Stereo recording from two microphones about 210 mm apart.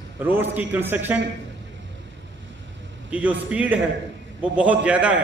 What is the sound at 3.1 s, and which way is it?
A man's voice, 5° right (ahead or behind).